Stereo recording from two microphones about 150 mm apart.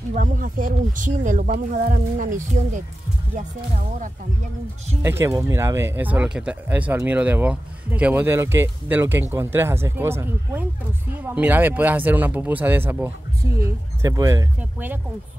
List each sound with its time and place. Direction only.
0.1 s speech: 65° right (ahead or behind)
5.0 s speech: 20° right (ahead or behind)
14.6 s speech: 10° right (ahead or behind)